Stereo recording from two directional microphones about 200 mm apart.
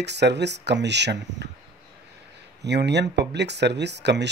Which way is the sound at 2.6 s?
60° right (ahead or behind).